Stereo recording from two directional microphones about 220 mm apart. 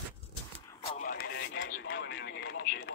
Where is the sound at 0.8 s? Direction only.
40° left (ahead or behind); by 1.9 s 60° left (ahead or behind).